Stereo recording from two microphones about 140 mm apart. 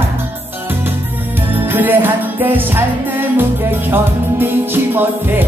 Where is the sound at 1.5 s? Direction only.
15° right (ahead or behind).